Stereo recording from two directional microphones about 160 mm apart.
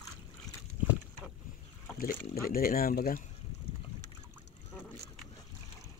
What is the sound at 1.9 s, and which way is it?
Boat, 65° left (ahead or behind).